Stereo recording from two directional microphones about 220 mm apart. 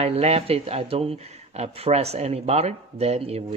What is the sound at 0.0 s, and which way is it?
Speech, 30° right (ahead or behind).